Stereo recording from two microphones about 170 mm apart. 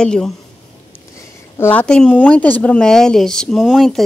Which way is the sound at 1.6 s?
10° left (ahead or behind).